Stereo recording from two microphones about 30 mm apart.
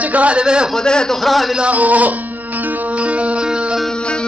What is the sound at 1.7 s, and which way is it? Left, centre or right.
Speech, right.